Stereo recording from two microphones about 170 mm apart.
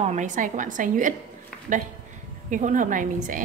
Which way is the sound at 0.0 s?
45° right (ahead or behind).